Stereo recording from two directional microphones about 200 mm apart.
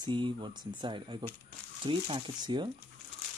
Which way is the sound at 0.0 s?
25° right (ahead or behind).